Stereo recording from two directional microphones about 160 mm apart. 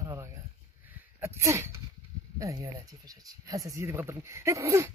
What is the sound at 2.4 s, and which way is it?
Speech, 20° right (ahead or behind).